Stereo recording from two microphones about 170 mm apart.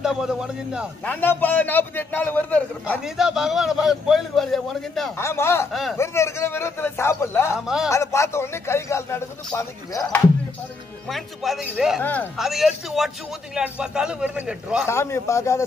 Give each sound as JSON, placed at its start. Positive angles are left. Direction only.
{"t": 0.0, "sound": "a man's voice", "side_deg": -5}
{"t": 1.0, "sound": "a man's voice", "side_deg": 10}
{"t": 3.0, "sound": "a man's voice", "side_deg": -5}
{"t": 5.1, "sound": "a man's voice", "side_deg": 15}
{"t": 5.7, "sound": "a man's voice", "side_deg": 0}
{"t": 5.9, "sound": "a man's voice", "side_deg": 15}
{"t": 7.5, "sound": "a man's voice", "side_deg": -5}
{"t": 7.9, "sound": "a man's voice", "side_deg": 15}
{"t": 11.1, "sound": "a man's voice", "side_deg": 0}
{"t": 12.0, "sound": "a man's voice", "side_deg": 10}
{"t": 12.4, "sound": "a man's voice", "side_deg": 0}
{"t": 14.9, "sound": "a man's voice", "side_deg": 15}